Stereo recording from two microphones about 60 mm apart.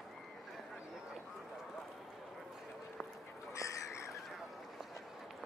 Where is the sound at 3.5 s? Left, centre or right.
Left.